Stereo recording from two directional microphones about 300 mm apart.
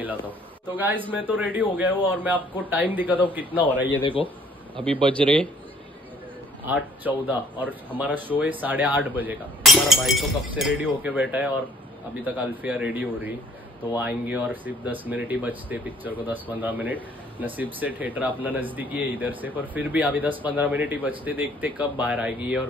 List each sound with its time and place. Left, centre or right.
0.7 s speech: centre
4.0 s a man's voice: centre
5.1 s speech: centre
6.6 s speech: centre